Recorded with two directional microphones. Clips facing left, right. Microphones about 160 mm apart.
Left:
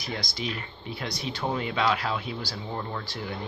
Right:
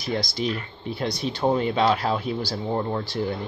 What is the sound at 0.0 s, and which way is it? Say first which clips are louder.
Speech: right 7 dB; 30° right (ahead or behind).